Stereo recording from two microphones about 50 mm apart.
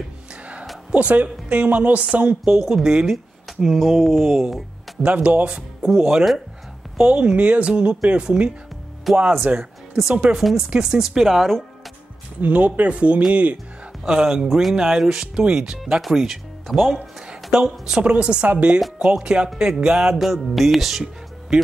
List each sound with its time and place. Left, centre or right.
0.9 s speech: right
2.5 s speech: centre
3.6 s music: centre
5.0 s speech: right
5.8 s speech: centre
9.1 s music: centre
9.6 s speech: centre
11.2 s music: centre
12.4 s speech: right
14.0 s speech: centre
16.0 s music: centre
17.5 s speech: centre
19.8 s music: centre